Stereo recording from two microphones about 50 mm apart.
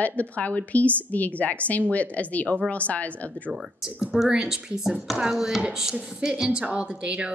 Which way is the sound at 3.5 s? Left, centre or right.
Centre.